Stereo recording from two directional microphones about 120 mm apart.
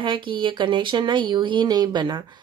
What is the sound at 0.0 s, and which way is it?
Speech, 45° right (ahead or behind).